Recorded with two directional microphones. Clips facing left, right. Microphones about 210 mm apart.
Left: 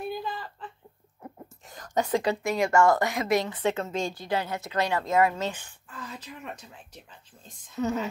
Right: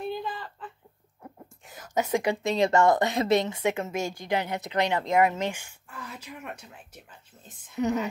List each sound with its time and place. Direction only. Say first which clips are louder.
0.2 s a sound: even; centre (ahead or behind)
1.7 s speech: even; 5° right (ahead or behind); by 3.5 s 25° right (ahead or behind)
3.5 s speech: even; 10° right (ahead or behind)